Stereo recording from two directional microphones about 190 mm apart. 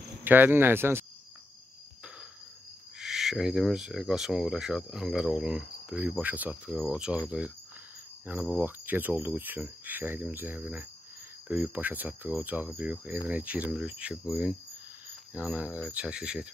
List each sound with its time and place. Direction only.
0.2 s speech: 10° right (ahead or behind)
3.0 s speech: centre (ahead or behind)